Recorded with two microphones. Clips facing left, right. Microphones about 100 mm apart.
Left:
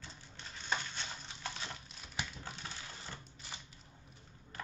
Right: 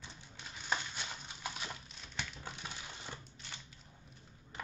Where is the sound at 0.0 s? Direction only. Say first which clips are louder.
Even; 10° right (ahead or behind).